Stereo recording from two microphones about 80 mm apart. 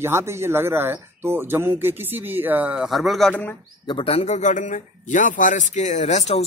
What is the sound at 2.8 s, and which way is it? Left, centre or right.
Speech, centre.